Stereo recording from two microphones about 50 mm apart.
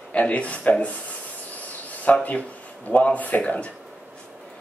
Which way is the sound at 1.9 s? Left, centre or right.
Left.